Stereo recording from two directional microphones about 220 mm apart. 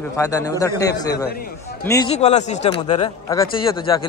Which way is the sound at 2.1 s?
30° left (ahead or behind).